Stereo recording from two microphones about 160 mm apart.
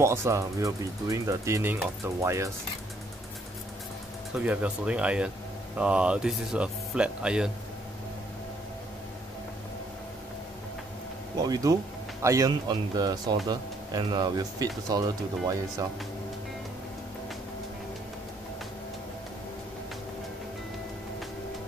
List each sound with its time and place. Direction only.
0.0 s speech: 15° right (ahead or behind)
4.4 s speech: 10° right (ahead or behind)
11.4 s speech: 25° right (ahead or behind)